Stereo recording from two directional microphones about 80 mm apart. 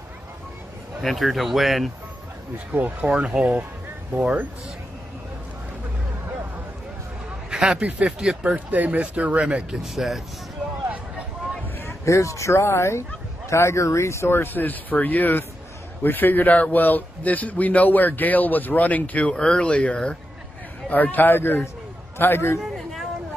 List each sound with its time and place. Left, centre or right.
1.0 s speech: centre
2.7 s speech: right
7.5 s speech: centre
9.8 s speech: centre
11.8 s a man's voice: left
22.6 s a sound: centre